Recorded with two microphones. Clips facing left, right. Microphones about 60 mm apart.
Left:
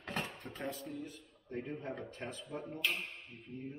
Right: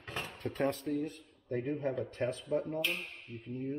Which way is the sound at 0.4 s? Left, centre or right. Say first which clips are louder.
Right 9 dB; right.